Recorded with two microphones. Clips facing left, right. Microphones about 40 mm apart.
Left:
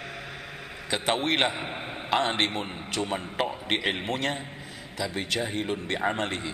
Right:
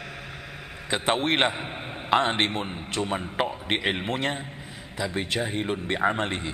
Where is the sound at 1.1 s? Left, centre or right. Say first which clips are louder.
Right 1 dB; right.